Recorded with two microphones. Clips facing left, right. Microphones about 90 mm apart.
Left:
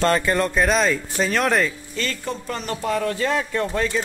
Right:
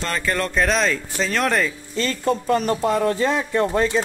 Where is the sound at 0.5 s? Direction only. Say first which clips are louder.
Left 1 dB; 5° left (ahead or behind).